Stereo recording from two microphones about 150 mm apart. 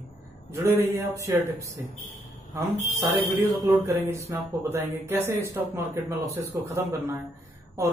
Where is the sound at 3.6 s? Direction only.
20° right (ahead or behind).